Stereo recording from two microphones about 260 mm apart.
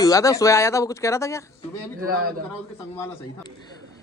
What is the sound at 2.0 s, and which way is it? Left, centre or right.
Speech, right.